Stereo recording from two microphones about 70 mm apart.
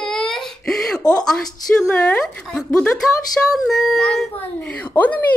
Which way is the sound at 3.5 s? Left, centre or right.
Centre.